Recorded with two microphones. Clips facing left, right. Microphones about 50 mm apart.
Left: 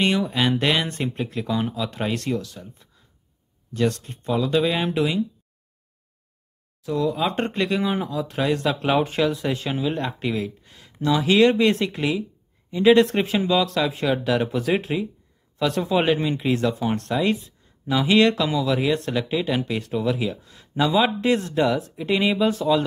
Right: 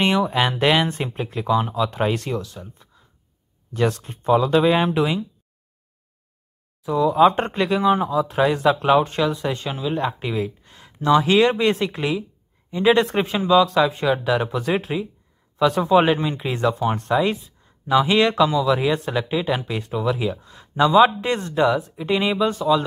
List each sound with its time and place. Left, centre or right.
0.0 s speech: centre
3.7 s speech: centre
6.8 s speech: centre